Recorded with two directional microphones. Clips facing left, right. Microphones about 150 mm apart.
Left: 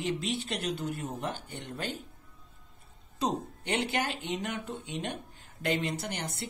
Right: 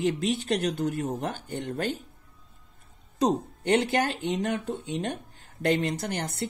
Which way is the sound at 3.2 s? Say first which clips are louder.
Right 6 dB; 45° right (ahead or behind).